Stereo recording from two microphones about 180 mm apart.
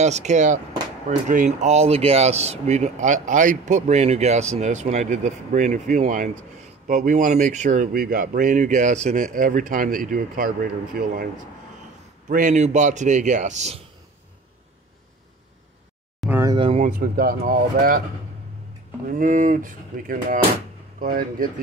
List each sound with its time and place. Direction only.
0.0 s speech: 40° right (ahead or behind)
12.3 s speech: 45° right (ahead or behind)
16.3 s a sound: 15° right (ahead or behind)
16.5 s a sound: 30° right (ahead or behind)
16.8 s speech: 55° right (ahead or behind)
19.0 s speech: 45° right (ahead or behind)